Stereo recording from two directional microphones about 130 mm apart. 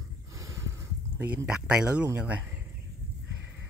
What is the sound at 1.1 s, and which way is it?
Speech, 10° right (ahead or behind).